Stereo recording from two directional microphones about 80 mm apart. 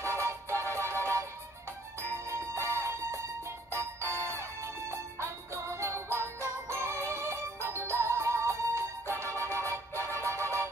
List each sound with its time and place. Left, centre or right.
0.0 s music: right
2.2 s music: right